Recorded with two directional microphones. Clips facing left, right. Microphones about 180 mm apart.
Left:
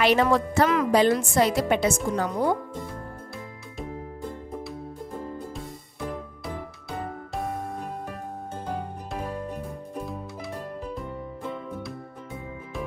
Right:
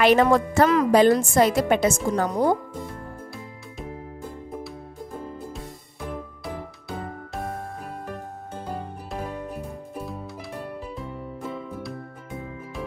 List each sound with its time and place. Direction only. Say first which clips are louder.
0.0 s a woman's voice: right 3 dB; 50° right (ahead or behind)
5.9 s music: even; centre (ahead or behind)
9.1 s music: even; 5° right (ahead or behind)